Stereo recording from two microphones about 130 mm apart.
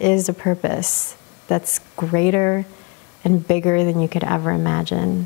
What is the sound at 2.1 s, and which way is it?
Speech, 15° left (ahead or behind).